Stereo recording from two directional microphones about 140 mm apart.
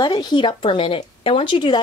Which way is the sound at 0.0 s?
30° left (ahead or behind).